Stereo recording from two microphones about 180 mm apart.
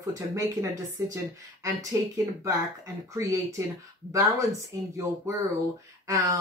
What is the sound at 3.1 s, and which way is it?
Speech, 15° right (ahead or behind).